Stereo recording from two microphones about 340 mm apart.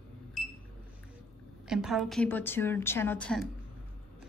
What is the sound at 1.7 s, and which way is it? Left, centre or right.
A woman's voice, centre.